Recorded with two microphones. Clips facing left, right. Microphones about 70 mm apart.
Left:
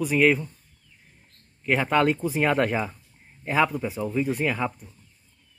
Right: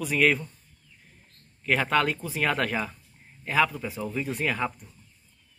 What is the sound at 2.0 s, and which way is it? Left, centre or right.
Speech, left.